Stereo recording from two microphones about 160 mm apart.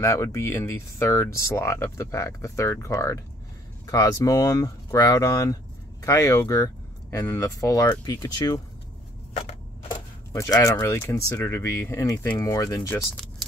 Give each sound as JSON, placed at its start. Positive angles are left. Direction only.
{"t": 0.0, "sound": "speech", "side_deg": 20}
{"t": 9.8, "sound": "speech", "side_deg": 20}